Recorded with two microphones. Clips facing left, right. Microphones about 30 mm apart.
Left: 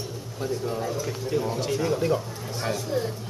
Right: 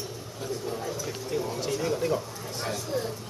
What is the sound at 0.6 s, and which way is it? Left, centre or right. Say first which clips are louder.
Speech: left 4 dB; centre.